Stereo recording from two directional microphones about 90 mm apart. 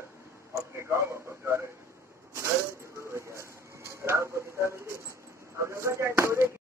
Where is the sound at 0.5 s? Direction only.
30° right (ahead or behind).